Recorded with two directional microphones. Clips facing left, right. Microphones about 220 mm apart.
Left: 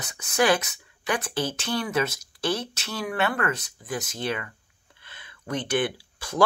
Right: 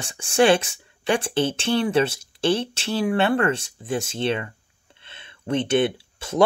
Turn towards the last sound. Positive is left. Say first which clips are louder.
# right 5 dB
turn(degrees=-25)  # may be behind; listen again after turning